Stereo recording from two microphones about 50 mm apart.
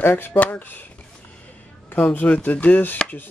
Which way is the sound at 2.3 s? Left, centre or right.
Left.